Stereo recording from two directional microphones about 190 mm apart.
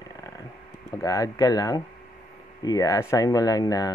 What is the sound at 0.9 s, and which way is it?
Speech, 15° left (ahead or behind).